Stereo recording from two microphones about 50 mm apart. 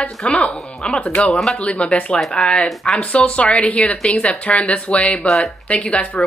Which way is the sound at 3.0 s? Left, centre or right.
Left.